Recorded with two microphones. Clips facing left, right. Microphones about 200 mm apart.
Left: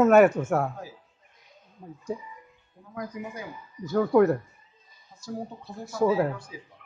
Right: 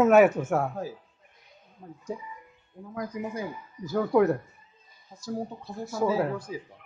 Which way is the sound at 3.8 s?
Centre (ahead or behind).